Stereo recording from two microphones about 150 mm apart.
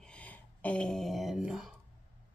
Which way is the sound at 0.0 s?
10° left (ahead or behind).